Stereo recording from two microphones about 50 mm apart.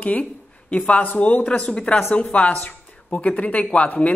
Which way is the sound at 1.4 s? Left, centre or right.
Centre.